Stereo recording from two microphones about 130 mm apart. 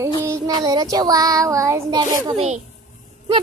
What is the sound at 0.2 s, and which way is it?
Child singing, 25° right (ahead or behind).